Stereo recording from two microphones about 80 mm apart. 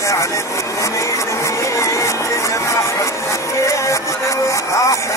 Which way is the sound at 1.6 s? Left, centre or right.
Left.